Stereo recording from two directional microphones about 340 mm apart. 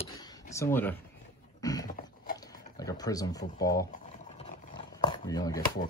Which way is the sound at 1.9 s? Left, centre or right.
Left.